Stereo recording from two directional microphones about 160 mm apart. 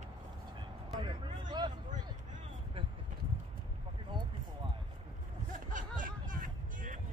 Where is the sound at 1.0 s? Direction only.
25° right (ahead or behind).